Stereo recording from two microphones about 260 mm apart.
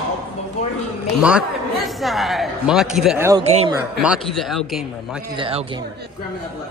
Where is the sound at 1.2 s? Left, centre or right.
Centre.